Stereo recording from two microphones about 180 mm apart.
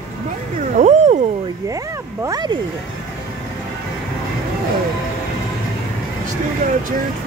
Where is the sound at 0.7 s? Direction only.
40° right (ahead or behind).